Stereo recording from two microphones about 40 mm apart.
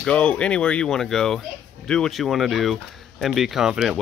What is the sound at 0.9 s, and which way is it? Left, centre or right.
Speech, centre.